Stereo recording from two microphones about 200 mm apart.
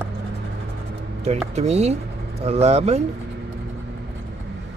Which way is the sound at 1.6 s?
35° right (ahead or behind).